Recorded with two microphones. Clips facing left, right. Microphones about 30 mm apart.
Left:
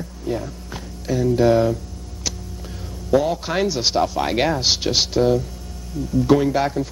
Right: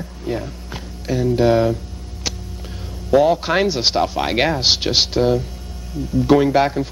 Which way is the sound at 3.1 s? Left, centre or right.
Right.